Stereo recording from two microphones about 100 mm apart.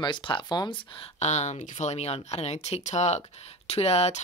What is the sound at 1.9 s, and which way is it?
Speech, 90° left.